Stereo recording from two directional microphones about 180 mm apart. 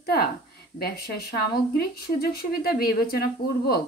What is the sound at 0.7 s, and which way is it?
Speech, 60° left (ahead or behind).